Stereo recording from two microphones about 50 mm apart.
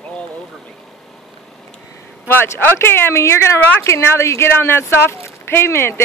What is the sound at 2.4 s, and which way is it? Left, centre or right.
Speech, left.